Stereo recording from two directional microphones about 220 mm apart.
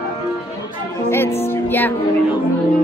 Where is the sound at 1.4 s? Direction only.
10° left (ahead or behind).